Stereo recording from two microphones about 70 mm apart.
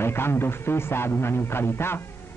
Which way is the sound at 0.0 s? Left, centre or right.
Left.